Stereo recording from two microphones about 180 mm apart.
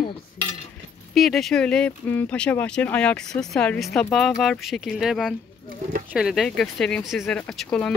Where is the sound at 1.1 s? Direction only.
Centre (ahead or behind).